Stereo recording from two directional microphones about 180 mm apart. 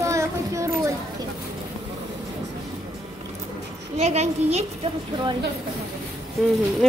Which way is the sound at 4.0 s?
35° right (ahead or behind).